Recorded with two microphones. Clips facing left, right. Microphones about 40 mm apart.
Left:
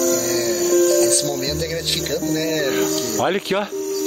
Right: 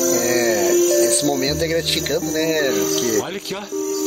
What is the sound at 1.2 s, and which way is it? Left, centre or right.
Speech, right.